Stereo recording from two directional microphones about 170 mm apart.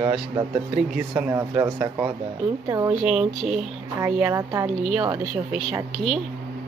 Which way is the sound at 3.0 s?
5° right (ahead or behind).